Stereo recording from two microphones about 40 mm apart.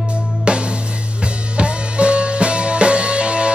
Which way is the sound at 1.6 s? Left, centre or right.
Right.